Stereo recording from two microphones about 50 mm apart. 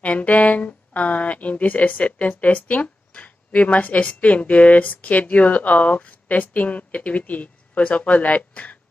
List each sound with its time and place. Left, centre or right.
0.0 s speech: left